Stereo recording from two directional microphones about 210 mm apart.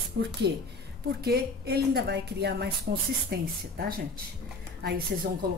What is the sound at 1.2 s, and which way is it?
Speech, 50° right (ahead or behind).